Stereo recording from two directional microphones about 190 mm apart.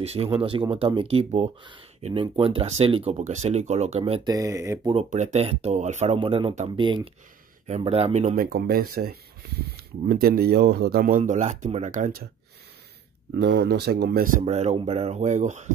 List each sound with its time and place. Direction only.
0.0 s speech: 30° right (ahead or behind)
4.3 s speech: 15° right (ahead or behind)
4.9 s speech: 35° right (ahead or behind)
13.4 s speech: 60° right (ahead or behind); by 15.7 s 40° right (ahead or behind)